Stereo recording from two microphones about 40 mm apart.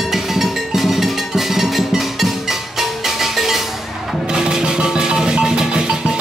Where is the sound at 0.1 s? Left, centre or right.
Centre.